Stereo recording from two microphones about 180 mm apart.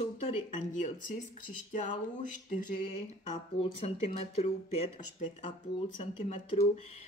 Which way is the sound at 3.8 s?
35° left (ahead or behind).